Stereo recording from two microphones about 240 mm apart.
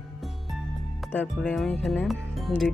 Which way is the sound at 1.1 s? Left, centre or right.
Centre.